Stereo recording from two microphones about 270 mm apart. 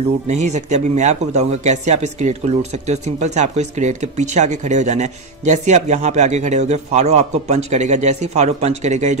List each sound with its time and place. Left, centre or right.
0.6 s speech: right